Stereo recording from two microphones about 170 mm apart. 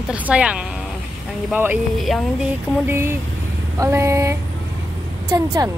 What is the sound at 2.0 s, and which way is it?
Speech, centre (ahead or behind).